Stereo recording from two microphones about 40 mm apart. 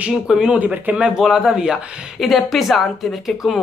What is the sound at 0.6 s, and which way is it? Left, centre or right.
Speech, right.